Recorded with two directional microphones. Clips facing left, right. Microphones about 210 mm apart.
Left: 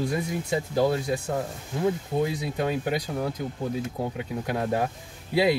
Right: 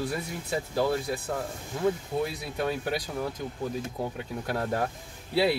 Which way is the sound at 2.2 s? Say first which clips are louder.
Left 3 dB; 15° left (ahead or behind).